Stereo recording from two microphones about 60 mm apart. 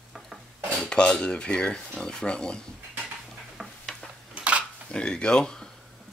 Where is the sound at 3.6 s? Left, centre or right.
Centre.